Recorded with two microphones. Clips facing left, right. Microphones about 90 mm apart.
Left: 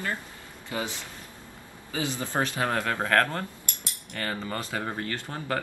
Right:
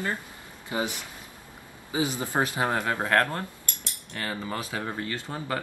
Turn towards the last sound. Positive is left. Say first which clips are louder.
# even
turn(degrees=-10)  # may be behind; listen again after turning